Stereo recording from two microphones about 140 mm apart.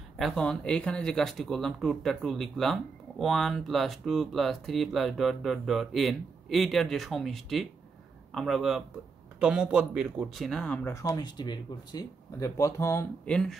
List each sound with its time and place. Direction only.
0.2 s speech: 5° left (ahead or behind)
11.0 s speech: 25° left (ahead or behind)
13.2 s speech: 5° left (ahead or behind)